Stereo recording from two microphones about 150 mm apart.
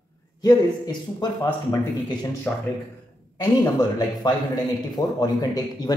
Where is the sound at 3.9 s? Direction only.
25° left (ahead or behind).